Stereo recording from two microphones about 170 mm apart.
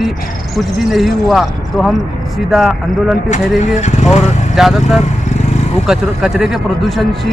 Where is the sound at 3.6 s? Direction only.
40° left (ahead or behind).